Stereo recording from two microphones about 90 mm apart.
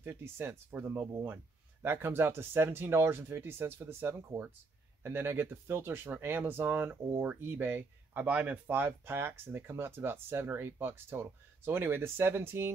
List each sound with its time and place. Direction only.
0.0 s speech: 25° right (ahead or behind)